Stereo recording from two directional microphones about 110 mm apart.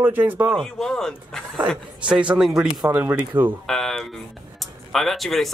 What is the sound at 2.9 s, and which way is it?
Speech, 15° right (ahead or behind).